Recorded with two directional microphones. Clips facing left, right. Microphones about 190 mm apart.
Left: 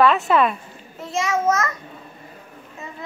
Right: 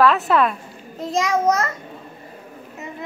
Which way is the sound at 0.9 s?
40° right (ahead or behind).